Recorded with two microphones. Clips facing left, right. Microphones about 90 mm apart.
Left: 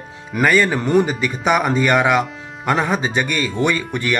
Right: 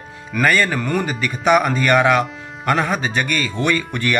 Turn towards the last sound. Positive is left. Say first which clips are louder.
# even
turn(degrees=10)  # may be behind; listen again after turning